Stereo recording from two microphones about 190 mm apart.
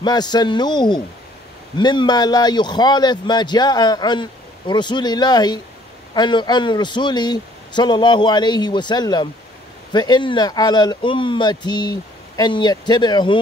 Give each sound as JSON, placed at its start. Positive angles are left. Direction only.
{"t": 0.0, "sound": "speech", "side_deg": 20}